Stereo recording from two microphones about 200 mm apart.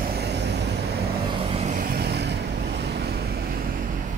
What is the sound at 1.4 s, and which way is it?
Vehicle, 30° right (ahead or behind).